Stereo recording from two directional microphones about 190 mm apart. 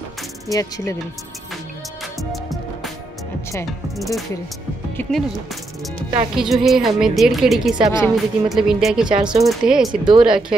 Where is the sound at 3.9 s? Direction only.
Centre (ahead or behind).